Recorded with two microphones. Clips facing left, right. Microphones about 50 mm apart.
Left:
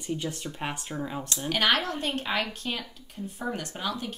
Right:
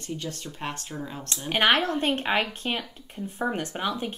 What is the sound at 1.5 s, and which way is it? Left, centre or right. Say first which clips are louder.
A woman's voice: right 4 dB; right.